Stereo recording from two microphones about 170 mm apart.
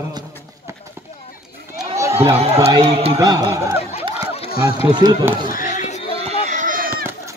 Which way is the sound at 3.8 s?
35° left (ahead or behind).